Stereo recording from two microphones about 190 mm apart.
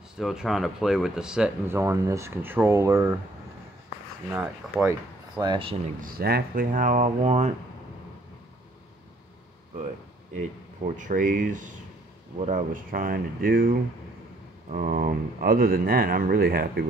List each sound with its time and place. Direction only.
0.2 s speech: centre (ahead or behind)
4.3 s speech: 10° right (ahead or behind)
5.4 s speech: 25° right (ahead or behind)
5.9 s speech: 50° right (ahead or behind)
11.0 s speech: 45° right (ahead or behind)